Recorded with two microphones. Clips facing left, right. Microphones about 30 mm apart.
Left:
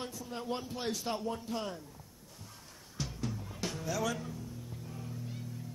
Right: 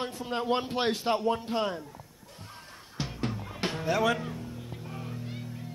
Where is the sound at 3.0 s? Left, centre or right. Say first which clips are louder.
Right 5 dB; right.